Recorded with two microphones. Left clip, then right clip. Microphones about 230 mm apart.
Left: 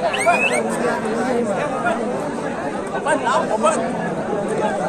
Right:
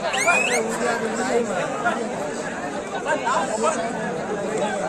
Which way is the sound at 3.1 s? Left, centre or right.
Left.